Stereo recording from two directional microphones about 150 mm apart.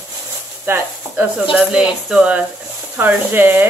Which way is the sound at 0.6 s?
10° right (ahead or behind).